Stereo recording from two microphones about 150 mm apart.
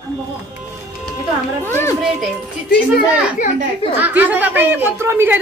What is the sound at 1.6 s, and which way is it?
Speech, 15° left (ahead or behind).